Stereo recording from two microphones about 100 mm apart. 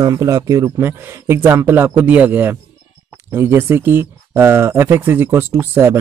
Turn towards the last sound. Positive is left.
turn(degrees=-25)  # may be behind; listen again after turning